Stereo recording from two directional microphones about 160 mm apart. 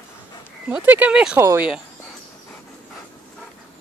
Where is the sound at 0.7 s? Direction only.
10° right (ahead or behind).